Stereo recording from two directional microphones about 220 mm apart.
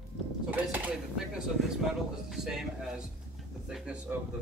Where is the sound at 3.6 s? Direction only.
5° right (ahead or behind).